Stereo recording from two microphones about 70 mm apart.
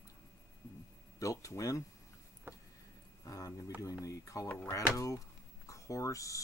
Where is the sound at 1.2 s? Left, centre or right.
Left.